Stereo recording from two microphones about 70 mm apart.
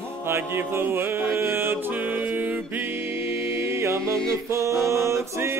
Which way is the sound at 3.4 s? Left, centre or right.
Right.